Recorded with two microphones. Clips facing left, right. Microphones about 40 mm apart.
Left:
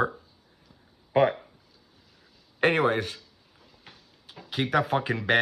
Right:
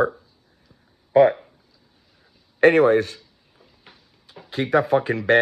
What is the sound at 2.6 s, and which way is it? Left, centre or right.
Speech, centre.